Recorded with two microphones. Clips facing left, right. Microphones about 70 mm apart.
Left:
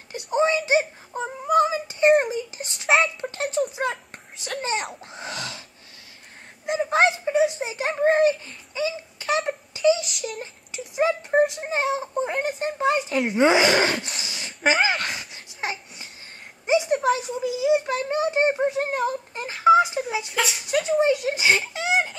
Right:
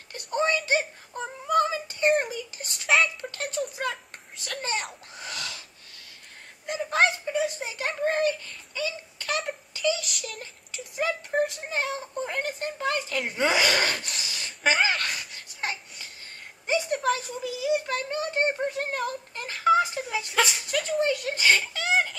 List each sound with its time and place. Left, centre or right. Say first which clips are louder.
0.1 s speech: left 4 dB; centre
3.4 s speech: left 6 dB; centre
3.7 s a child's voice: left 4 dB; centre
6.6 s a child's voice: left 4 dB; left
9.5 s a sound: left 7 dB; centre
10.4 s a child's voice: left 5 dB; left
14.2 s a sound: left 1 dB; left
14.6 s speech: left 3 dB; centre
14.9 s babbling: left 2 dB; centre
16.6 s a sound: left 6 dB; centre
17.1 s a child's voice: left 5 dB; centre
20.3 s speech: right 3 dB; centre
20.6 s a child's voice: left 5 dB; centre